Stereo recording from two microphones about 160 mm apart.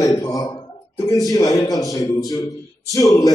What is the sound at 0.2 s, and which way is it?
Speech, 20° left (ahead or behind).